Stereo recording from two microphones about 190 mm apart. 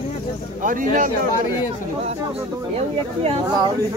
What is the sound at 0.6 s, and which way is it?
Speech, 45° right (ahead or behind).